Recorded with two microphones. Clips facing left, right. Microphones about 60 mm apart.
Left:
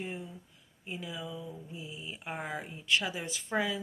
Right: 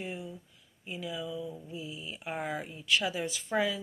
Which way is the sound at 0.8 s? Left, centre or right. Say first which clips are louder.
Right 3 dB; left.